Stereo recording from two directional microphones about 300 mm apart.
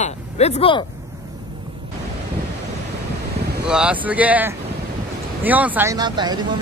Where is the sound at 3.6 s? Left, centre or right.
Centre.